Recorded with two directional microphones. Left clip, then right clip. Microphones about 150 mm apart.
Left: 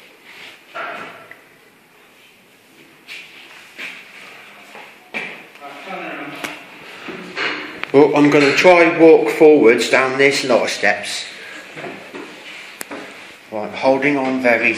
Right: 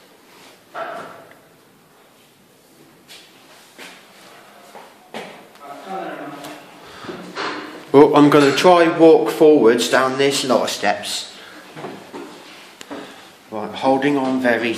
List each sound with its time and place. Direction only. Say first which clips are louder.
7.9 s a man's voice: right 1 dB; 40° right (ahead or behind)
8.5 s speech: left 2 dB; 20° right (ahead or behind)
13.5 s a sound: left 2 dB; 10° right (ahead or behind)
14.4 s speech: left 7 dB; 15° right (ahead or behind)